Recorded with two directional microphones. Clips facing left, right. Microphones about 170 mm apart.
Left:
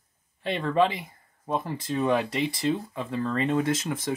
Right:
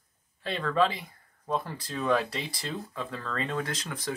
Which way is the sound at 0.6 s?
25° left (ahead or behind).